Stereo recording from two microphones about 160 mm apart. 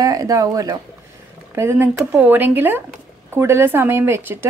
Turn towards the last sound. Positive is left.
turn(degrees=-15)  # may be behind; listen again after turning